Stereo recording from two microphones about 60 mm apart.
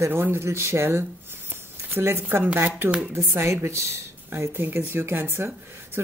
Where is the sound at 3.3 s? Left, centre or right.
Right.